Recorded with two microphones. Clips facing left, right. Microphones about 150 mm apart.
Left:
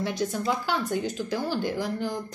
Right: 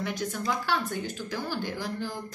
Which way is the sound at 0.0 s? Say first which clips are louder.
Left 4 dB; 25° left (ahead or behind).